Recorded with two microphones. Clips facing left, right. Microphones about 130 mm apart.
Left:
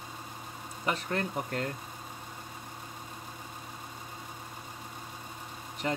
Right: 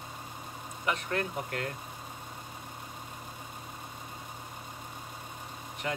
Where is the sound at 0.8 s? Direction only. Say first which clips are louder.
Even; 30° left (ahead or behind).